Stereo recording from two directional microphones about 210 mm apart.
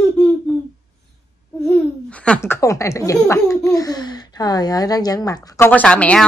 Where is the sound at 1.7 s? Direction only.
5° left (ahead or behind).